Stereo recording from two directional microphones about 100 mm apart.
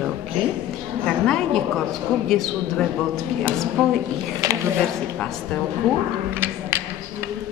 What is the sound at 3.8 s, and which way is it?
Speech, 5° left (ahead or behind).